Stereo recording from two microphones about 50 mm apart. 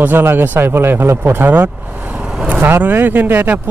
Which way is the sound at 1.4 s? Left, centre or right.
Right.